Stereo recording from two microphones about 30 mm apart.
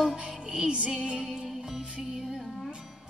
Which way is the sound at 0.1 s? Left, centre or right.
Right.